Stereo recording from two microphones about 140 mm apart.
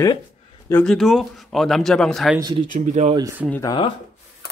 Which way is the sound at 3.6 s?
35° left (ahead or behind).